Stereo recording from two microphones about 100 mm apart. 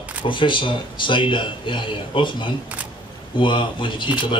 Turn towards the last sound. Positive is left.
turn(degrees=55)  # may be behind; listen again after turning